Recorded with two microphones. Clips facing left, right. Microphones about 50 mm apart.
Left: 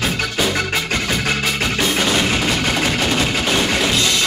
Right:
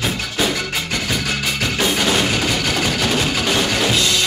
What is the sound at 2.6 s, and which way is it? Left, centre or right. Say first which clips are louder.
Music: left 1 dB; centre.